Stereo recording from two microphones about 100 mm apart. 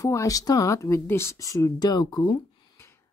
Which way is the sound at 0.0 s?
35° left (ahead or behind).